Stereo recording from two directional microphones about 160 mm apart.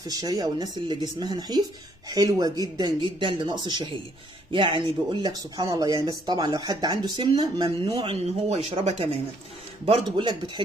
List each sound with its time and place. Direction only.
0.0 s speech: 25° right (ahead or behind)